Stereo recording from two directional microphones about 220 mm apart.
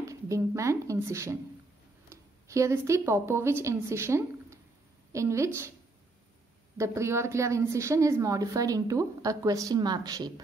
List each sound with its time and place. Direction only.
0.0 s a woman's voice: 15° right (ahead or behind)
6.8 s a woman's voice: 15° right (ahead or behind)